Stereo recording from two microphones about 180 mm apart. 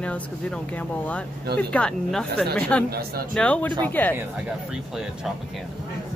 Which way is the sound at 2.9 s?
60° right (ahead or behind).